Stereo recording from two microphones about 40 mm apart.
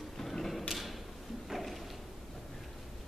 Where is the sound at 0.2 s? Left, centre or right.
Centre.